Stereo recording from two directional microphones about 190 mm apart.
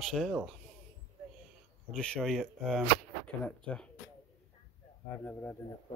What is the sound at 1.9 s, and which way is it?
Speech, 5° left (ahead or behind).